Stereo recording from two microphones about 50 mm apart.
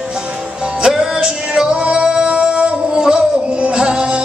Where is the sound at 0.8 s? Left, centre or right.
Centre.